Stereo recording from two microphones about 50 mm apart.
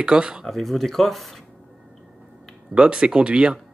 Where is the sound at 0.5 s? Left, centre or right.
Centre.